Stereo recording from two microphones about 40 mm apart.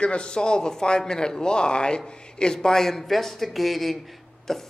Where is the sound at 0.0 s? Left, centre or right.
Left.